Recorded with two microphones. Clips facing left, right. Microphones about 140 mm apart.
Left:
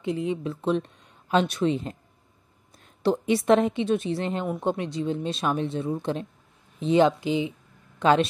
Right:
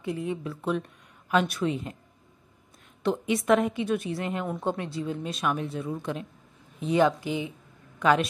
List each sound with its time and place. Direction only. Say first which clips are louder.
0.0 s speech: left 4 dB; 20° left (ahead or behind)
3.0 s speech: left 4 dB; 35° left (ahead or behind)